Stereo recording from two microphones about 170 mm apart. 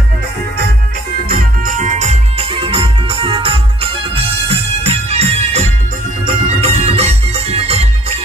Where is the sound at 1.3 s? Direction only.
50° right (ahead or behind).